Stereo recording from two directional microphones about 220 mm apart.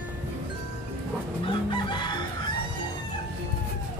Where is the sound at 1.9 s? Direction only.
20° left (ahead or behind).